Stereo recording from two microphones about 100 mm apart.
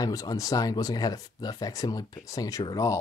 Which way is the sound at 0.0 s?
35° left (ahead or behind).